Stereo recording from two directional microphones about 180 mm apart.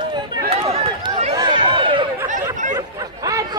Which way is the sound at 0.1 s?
30° right (ahead or behind).